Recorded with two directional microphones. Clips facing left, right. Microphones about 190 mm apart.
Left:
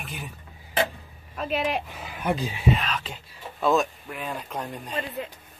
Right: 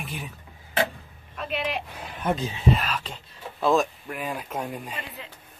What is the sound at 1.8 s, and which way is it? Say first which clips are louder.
Speech: even; centre (ahead or behind).